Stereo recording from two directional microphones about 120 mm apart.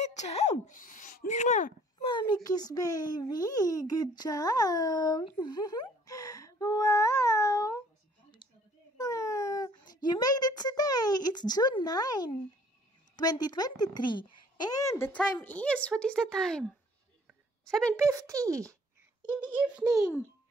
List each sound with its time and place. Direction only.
0.0 s speech: 70° left (ahead or behind)
2.0 s speech: 40° left (ahead or behind)
5.4 s a sound: 35° left (ahead or behind)
8.4 s a sound: 40° left (ahead or behind)
8.9 s a woman's voice: 30° left (ahead or behind); by 17.9 s 5° left (ahead or behind)
17.9 s speech: 25° right (ahead or behind)
19.5 s a child's voice: 10° right (ahead or behind)